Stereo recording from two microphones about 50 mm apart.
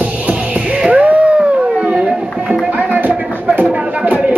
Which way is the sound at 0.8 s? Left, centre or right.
Right.